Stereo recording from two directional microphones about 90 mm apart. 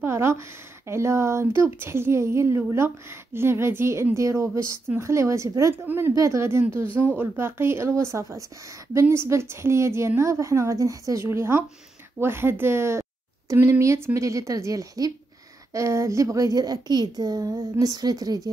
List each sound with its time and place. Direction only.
0.0 s a woman's voice: 30° right (ahead or behind)